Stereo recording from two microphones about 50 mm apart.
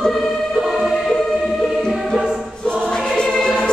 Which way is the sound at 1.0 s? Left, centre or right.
Centre.